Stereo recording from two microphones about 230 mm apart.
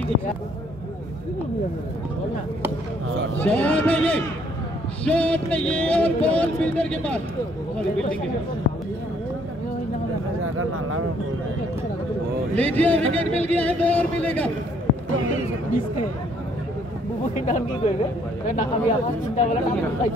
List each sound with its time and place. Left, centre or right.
3.3 s speech: centre
10.4 s speech: right
12.5 s speech: centre
17.4 s speech: left